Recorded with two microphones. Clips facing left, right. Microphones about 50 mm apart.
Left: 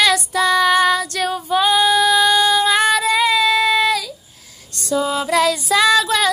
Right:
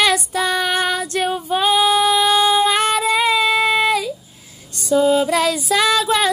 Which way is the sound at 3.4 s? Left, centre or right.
Right.